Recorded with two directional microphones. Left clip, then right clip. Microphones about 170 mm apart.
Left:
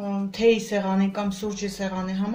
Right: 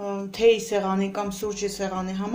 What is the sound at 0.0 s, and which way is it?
A woman's voice, 45° right (ahead or behind).